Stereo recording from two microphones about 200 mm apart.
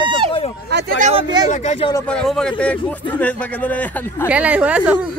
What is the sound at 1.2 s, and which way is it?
Speech, 20° right (ahead or behind).